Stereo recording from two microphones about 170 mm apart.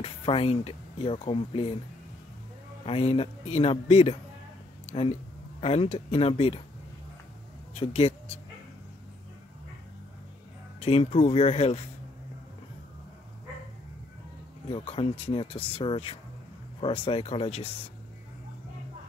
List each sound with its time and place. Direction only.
0.0 s speech: 35° left (ahead or behind)
2.8 s speech: 35° left (ahead or behind)
4.8 s a sound: 35° left (ahead or behind)
5.6 s speech: 35° left (ahead or behind)
10.8 s speech: 35° left (ahead or behind)
14.7 s speech: 35° left (ahead or behind)